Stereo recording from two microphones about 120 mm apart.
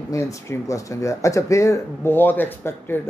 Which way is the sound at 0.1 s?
25° left (ahead or behind).